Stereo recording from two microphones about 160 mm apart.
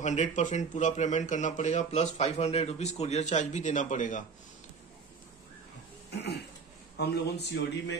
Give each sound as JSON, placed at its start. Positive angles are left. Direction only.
{"t": 0.0, "sound": "speech", "side_deg": 45}
{"t": 7.0, "sound": "a man's voice", "side_deg": 90}